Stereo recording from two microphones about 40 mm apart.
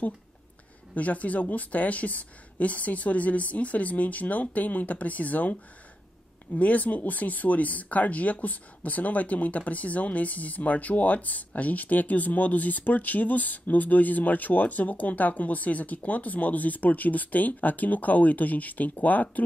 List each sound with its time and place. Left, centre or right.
0.9 s speech: left
6.6 s speech: left